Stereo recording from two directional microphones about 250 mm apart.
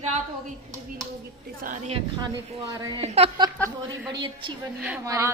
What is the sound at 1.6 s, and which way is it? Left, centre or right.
Speech, right.